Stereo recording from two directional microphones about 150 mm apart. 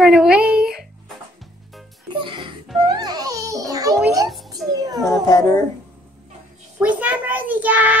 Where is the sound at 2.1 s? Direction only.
35° right (ahead or behind).